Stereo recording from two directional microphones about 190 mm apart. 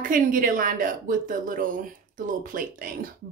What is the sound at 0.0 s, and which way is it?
Speech, 45° right (ahead or behind).